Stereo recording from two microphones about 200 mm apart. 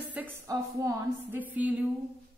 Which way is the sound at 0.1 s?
10° right (ahead or behind).